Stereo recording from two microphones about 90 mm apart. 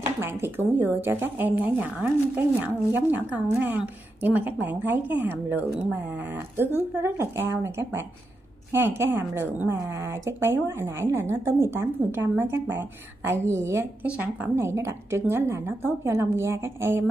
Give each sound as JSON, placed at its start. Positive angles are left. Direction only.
{"t": 0.2, "sound": "a woman's voice", "side_deg": -25}
{"t": 9.7, "sound": "a woman's voice", "side_deg": -30}
{"t": 14.0, "sound": "a woman's voice", "side_deg": -15}
{"t": 14.5, "sound": "a woman's voice", "side_deg": -30}